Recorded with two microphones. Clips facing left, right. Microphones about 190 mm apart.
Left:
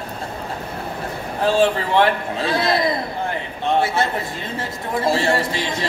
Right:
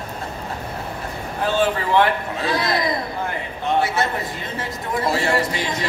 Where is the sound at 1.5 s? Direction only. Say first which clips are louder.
Left 1 dB; 25° left (ahead or behind).